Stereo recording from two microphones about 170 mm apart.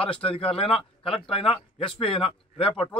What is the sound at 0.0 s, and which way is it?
Speech, 35° left (ahead or behind).